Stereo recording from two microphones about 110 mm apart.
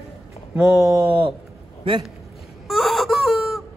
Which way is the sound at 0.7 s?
30° right (ahead or behind).